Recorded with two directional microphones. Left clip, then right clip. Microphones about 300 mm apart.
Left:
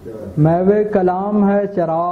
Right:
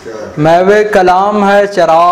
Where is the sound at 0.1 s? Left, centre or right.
Centre.